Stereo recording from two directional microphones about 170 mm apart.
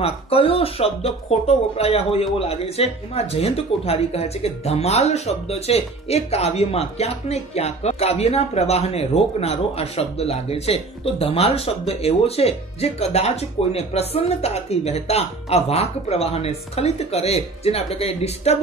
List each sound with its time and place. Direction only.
0.0 s speech: 35° left (ahead or behind)